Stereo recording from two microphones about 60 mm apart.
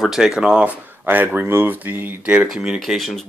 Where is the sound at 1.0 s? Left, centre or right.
Right.